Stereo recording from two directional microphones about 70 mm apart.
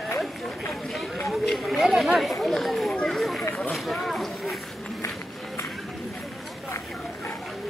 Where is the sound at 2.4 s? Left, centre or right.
Centre.